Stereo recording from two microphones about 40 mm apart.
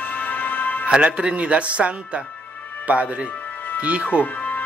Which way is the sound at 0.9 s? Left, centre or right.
Right.